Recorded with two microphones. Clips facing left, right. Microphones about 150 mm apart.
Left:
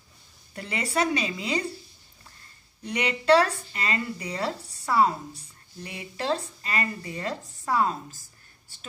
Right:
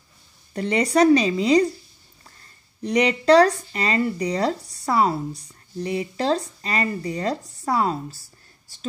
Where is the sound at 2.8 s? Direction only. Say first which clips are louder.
Right 5 dB; 40° right (ahead or behind).